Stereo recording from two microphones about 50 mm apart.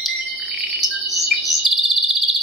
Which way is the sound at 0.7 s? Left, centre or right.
Centre.